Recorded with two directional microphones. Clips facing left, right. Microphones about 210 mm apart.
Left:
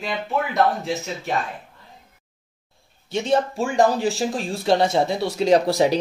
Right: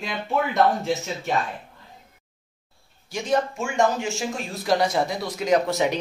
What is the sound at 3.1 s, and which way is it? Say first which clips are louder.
Speech: left 3 dB; 25° left (ahead or behind).